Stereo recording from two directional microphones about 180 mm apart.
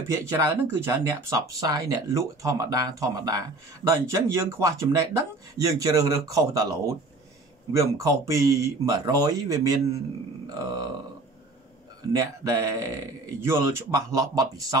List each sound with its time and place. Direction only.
0.1 s speech: 15° right (ahead or behind)
10.4 s grunt: 20° right (ahead or behind)
12.1 s speech: 15° right (ahead or behind)